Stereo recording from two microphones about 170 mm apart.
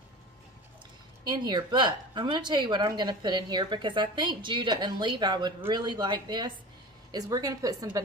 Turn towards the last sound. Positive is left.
turn(degrees=-20)  # may be behind; listen again after turning